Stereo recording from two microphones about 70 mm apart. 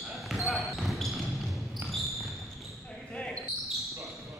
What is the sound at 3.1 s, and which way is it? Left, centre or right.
Basketball bounce, centre.